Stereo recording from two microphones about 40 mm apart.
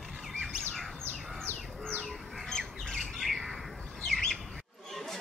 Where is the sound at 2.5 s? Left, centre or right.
Centre.